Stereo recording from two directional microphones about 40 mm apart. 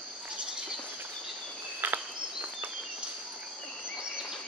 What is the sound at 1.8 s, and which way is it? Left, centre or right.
Insect, right.